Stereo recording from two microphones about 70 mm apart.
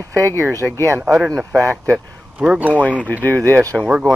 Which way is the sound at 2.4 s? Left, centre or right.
Centre.